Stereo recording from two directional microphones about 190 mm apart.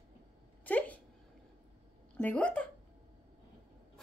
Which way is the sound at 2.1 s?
5° left (ahead or behind).